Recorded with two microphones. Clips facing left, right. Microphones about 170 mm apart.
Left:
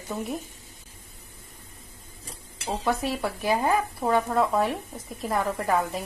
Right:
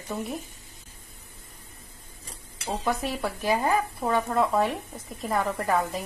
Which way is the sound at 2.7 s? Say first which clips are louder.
Left 1 dB; centre (ahead or behind).